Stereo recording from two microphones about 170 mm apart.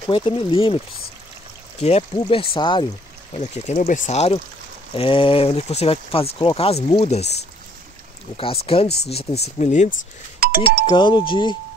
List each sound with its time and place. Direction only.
0.0 s speech: 30° left (ahead or behind)
1.8 s speech: 40° left (ahead or behind)
3.3 s speech: 45° left (ahead or behind)
8.4 s speech: 35° left (ahead or behind)
9.6 s speech: 45° left (ahead or behind)
10.4 s doorbell: 65° right (ahead or behind)
10.9 s speech: 30° left (ahead or behind)